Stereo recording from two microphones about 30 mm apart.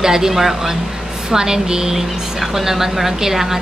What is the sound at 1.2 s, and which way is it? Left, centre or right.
Speech, right.